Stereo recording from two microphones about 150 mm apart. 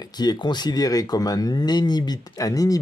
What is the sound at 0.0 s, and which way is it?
Speech, 25° left (ahead or behind).